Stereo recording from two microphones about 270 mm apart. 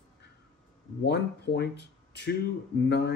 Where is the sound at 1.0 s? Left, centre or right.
Left.